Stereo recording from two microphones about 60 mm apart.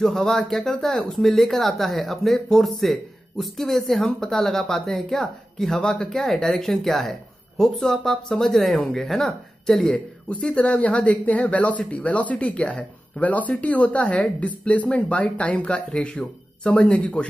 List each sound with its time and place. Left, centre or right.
0.0 s speech: centre
9.9 s speech: centre